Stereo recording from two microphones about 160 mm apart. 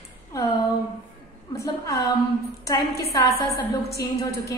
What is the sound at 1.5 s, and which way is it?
Speech, 20° left (ahead or behind).